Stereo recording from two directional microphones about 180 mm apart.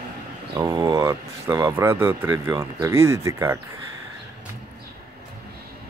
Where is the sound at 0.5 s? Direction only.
20° right (ahead or behind).